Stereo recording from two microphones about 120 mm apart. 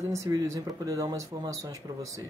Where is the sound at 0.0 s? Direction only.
25° right (ahead or behind).